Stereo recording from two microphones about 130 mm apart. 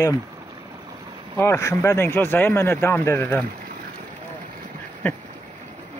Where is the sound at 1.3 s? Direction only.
20° left (ahead or behind).